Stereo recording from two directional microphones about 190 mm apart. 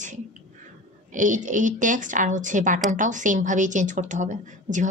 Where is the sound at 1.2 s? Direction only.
40° right (ahead or behind).